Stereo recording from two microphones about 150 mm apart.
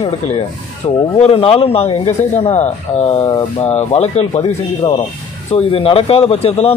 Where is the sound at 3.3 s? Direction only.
30° left (ahead or behind).